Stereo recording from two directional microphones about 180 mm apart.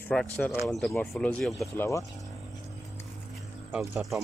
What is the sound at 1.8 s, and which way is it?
Speech, 15° left (ahead or behind).